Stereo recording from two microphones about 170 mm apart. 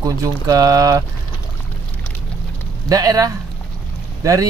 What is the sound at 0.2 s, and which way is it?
Speech, 20° right (ahead or behind).